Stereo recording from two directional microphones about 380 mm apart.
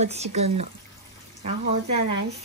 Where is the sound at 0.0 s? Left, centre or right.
Centre.